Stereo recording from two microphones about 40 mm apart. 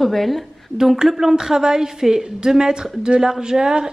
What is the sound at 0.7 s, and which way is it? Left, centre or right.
A woman's voice, centre.